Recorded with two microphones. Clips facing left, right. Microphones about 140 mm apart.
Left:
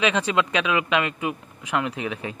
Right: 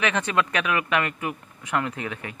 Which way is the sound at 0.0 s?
10° left (ahead or behind).